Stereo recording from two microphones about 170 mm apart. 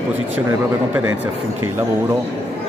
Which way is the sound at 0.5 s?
15° right (ahead or behind).